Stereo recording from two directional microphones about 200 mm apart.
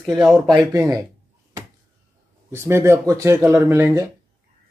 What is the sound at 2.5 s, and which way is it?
A man's voice, 10° right (ahead or behind).